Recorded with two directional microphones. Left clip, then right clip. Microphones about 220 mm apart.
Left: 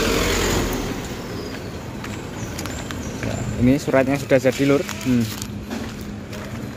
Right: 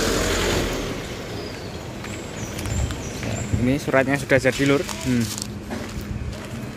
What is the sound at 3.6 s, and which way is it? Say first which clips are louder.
Speech: left 2 dB; 10° left (ahead or behind).